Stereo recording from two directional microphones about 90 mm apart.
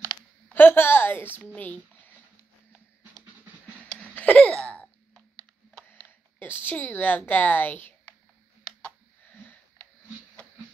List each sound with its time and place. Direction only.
0.5 s a sound: 20° left (ahead or behind)
1.5 s speech: 20° left (ahead or behind)
3.8 s laughter: 15° left (ahead or behind)
5.9 s a sound: 25° left (ahead or behind)
6.6 s a woman's voice: 20° left (ahead or behind)
9.3 s wheeze: 15° left (ahead or behind)